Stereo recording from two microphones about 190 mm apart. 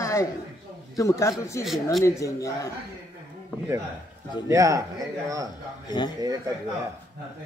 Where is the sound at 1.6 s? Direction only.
Centre (ahead or behind).